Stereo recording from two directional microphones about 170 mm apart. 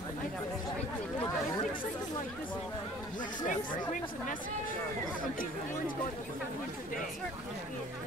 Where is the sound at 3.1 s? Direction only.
50° left (ahead or behind).